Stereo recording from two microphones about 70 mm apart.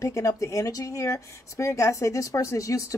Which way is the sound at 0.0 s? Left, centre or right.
Left.